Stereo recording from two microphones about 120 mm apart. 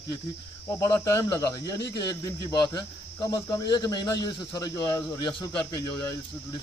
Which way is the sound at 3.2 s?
30° left (ahead or behind).